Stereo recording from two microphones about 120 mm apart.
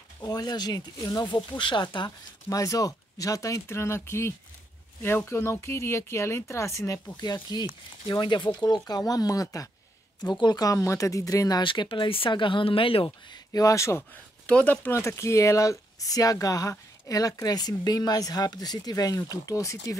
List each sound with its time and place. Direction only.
0.3 s speech: 35° left (ahead or behind)
7.4 s speech: 35° left (ahead or behind)
13.5 s speech: 25° left (ahead or behind)
14.4 s speech: 10° left (ahead or behind)